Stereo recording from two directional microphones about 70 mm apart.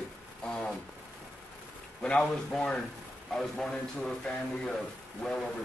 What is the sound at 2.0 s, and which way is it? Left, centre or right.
A man's voice, centre.